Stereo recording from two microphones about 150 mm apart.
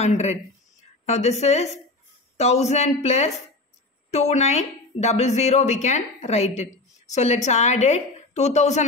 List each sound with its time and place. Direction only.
0.0 s speech: 50° left (ahead or behind)